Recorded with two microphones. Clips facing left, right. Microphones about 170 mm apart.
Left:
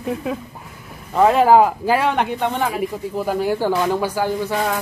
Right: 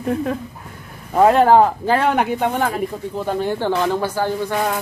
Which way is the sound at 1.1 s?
Centre (ahead or behind).